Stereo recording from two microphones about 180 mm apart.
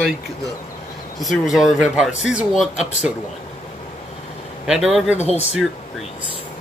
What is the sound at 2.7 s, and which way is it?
Speech, 40° left (ahead or behind).